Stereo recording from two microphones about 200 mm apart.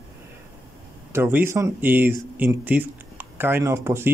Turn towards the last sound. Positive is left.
turn(degrees=-10)  # may be behind; listen again after turning